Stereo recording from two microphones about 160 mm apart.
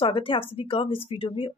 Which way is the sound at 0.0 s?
35° left (ahead or behind).